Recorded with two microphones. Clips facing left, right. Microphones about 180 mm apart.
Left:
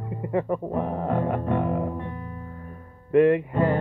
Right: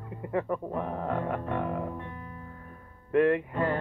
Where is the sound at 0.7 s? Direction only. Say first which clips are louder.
Left 5 dB; 20° left (ahead or behind).